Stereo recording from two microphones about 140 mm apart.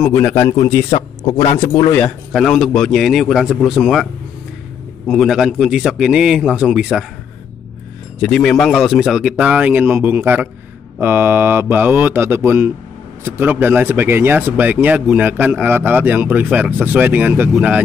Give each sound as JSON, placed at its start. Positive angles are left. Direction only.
{"t": 0.0, "sound": "a man's voice", "side_deg": 15}
{"t": 0.5, "sound": "a man's voice", "side_deg": 25}
{"t": 1.4, "sound": "a man's voice", "side_deg": 50}
{"t": 1.9, "sound": "a man's voice", "side_deg": 10}
{"t": 8.2, "sound": "speech", "side_deg": 5}